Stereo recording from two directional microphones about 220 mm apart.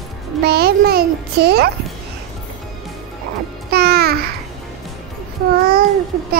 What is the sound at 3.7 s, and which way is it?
Music, 45° right (ahead or behind).